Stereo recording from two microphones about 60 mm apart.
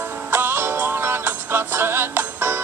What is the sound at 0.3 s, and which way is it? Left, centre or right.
Music, right.